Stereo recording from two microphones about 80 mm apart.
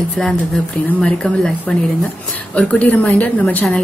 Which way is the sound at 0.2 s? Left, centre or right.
Centre.